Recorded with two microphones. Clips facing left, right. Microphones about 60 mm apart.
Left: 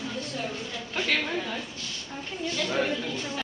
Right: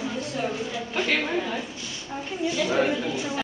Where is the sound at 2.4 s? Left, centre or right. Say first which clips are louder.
Right 5 dB; centre.